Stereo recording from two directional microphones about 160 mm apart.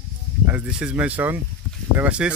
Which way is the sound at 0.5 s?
10° right (ahead or behind).